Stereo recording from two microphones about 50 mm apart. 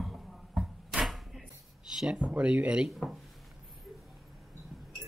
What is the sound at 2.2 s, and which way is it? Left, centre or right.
Speech, right.